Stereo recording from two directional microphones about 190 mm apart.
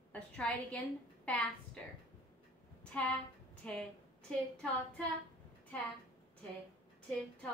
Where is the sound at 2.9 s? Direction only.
5° left (ahead or behind).